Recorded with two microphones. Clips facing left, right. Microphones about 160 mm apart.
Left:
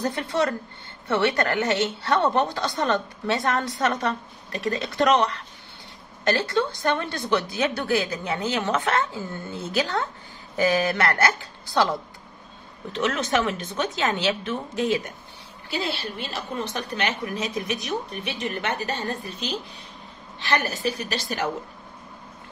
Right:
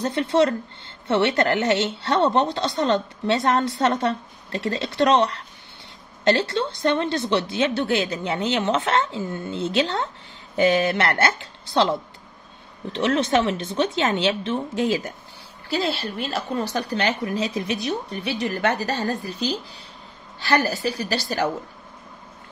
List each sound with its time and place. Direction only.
0.0 s speech: 25° right (ahead or behind)
15.7 s a woman's voice: 40° right (ahead or behind)